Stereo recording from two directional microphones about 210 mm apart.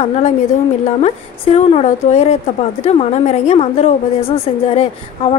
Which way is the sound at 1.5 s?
30° left (ahead or behind).